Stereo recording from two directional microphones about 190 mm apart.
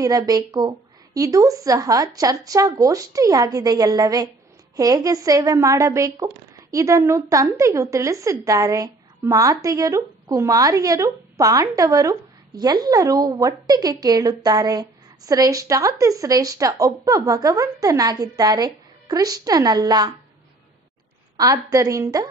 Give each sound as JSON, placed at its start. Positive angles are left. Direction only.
{"t": 0.0, "sound": "a woman's voice", "side_deg": -20}
{"t": 21.4, "sound": "a woman's voice", "side_deg": -20}